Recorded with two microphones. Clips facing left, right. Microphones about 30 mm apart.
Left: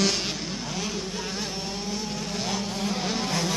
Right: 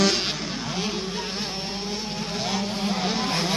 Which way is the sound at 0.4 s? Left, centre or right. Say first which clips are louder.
Right 3 dB; right.